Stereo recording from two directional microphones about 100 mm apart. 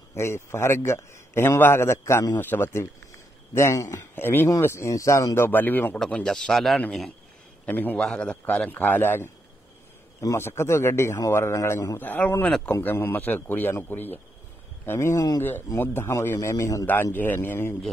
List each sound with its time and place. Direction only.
0.1 s a man's voice: 25° left (ahead or behind); by 6.8 s centre (ahead or behind)
7.6 s a man's voice: 15° left (ahead or behind)
12.0 s a man's voice: 20° left (ahead or behind)